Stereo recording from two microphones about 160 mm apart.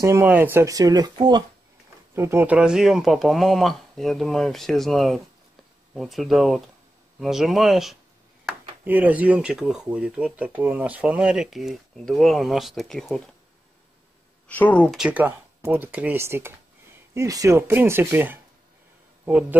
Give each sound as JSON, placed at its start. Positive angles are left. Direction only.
{"t": 0.0, "sound": "speech", "side_deg": -15}
{"t": 2.1, "sound": "speech", "side_deg": -15}
{"t": 14.5, "sound": "speech", "side_deg": 10}
{"t": 15.0, "sound": "speech", "side_deg": -10}